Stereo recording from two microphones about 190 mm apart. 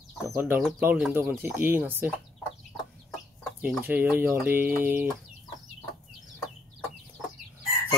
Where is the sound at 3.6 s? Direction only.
10° right (ahead or behind).